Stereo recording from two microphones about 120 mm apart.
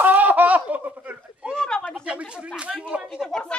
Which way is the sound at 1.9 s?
10° right (ahead or behind).